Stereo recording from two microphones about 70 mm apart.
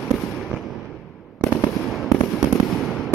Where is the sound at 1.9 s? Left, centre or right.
Centre.